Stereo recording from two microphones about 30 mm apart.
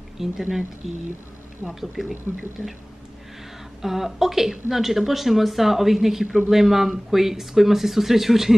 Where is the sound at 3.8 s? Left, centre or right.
Centre.